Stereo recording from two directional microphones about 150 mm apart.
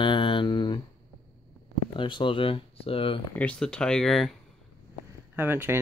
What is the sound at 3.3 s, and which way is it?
Speech, 5° left (ahead or behind).